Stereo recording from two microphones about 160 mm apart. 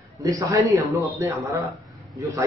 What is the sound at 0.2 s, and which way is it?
A man's voice, 20° right (ahead or behind).